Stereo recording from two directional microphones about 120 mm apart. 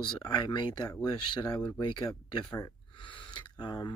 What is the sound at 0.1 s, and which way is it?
Speech, 35° left (ahead or behind).